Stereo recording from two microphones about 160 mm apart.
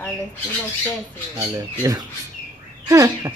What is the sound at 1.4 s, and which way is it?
Speech, 20° right (ahead or behind).